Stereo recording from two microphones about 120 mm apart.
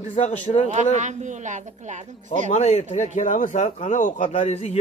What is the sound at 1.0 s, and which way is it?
A woman's voice, 90° right.